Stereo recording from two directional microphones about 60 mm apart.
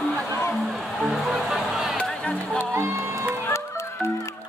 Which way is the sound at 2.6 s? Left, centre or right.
Right.